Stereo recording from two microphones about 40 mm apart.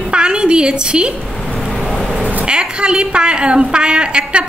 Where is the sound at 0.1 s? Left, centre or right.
Right.